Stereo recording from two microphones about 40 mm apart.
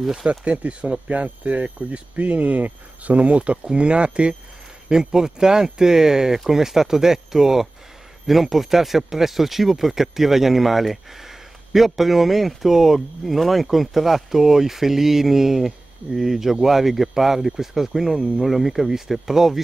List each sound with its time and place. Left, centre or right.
0.0 s speech: centre
0.5 s speech: right
4.8 s speech: centre